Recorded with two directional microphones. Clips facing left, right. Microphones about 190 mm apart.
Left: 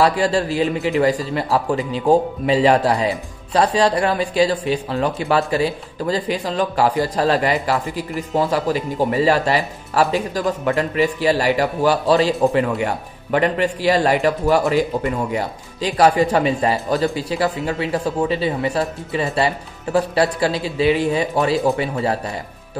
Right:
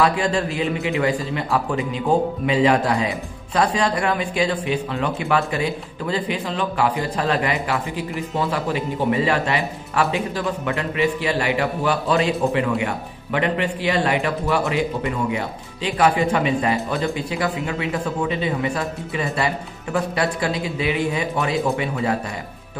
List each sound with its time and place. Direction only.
0.0 s speech: 35° left (ahead or behind)